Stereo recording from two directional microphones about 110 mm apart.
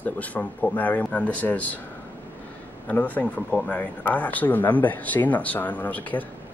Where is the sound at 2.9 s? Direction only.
15° left (ahead or behind).